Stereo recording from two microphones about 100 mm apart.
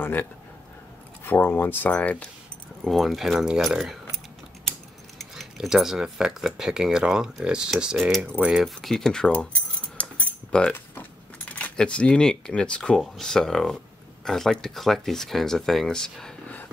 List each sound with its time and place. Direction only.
0.0 s speech: 20° left (ahead or behind)
2.8 s speech: centre (ahead or behind)
5.2 s speech: centre (ahead or behind)
8.8 s speech: 5° left (ahead or behind)
10.0 s mechanisms: 15° left (ahead or behind)
11.5 s speech: 10° left (ahead or behind)